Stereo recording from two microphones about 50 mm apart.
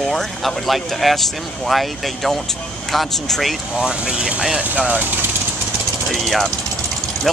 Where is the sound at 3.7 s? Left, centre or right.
Centre.